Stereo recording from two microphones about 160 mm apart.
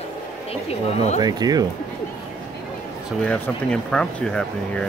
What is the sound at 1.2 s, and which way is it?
Speech, 25° right (ahead or behind).